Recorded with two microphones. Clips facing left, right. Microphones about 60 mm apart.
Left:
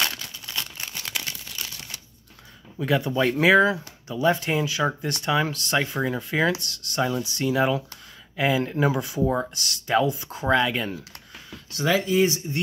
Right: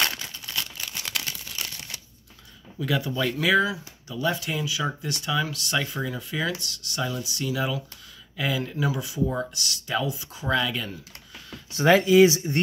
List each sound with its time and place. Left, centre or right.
0.0 s crumpling: centre
0.6 s crumpling: centre
1.1 s a sound: centre
2.8 s speech: left
4.1 s speech: left
4.4 s speech: left
6.6 s speech: left
7.0 s speech: left
10.5 s speech: left
12.0 s speech: right